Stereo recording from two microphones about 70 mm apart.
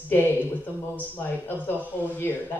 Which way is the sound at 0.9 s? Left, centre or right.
Left.